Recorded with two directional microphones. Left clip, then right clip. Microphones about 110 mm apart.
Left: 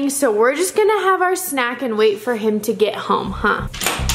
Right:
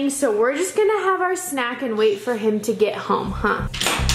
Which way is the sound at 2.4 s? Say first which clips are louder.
Left 2 dB; 15° left (ahead or behind).